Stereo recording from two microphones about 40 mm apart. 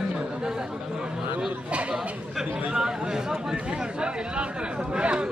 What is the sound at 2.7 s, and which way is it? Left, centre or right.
Speech, centre.